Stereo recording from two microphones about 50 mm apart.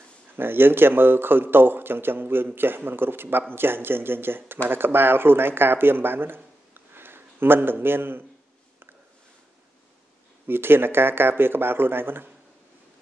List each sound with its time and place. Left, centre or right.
0.4 s a man's voice: right
10.4 s a man's voice: right